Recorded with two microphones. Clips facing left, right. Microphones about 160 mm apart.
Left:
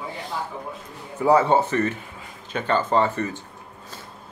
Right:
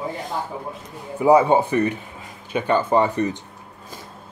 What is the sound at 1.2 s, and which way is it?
Speech, 15° right (ahead or behind).